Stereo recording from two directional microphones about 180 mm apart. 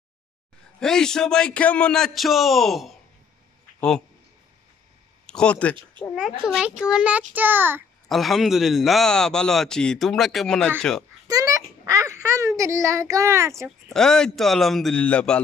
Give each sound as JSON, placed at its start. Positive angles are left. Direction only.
{"t": 0.7, "sound": "a man's voice", "side_deg": 5}
{"t": 5.2, "sound": "a man's voice", "side_deg": 5}
{"t": 8.1, "sound": "a man's voice", "side_deg": 0}
{"t": 11.2, "sound": "a sound", "side_deg": -20}
{"t": 13.7, "sound": "a man's voice", "side_deg": 5}